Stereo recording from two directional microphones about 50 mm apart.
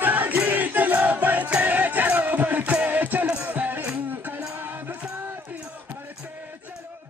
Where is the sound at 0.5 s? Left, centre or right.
Right.